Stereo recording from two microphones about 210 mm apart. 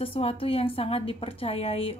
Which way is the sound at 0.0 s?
25° left (ahead or behind).